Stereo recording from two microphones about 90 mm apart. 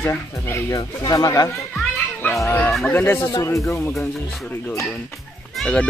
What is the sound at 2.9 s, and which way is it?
Speech, 25° left (ahead or behind).